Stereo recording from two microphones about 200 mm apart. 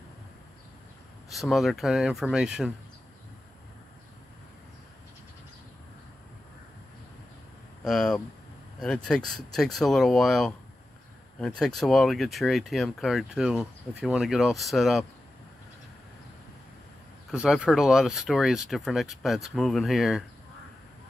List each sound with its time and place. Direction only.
1.3 s speech: centre (ahead or behind)
7.8 s speech: centre (ahead or behind)
17.3 s speech: 5° right (ahead or behind)